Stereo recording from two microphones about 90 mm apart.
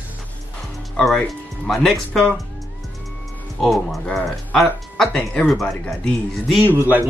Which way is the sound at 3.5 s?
Centre (ahead or behind).